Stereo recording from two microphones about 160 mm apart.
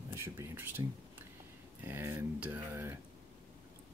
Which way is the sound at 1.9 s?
15° right (ahead or behind).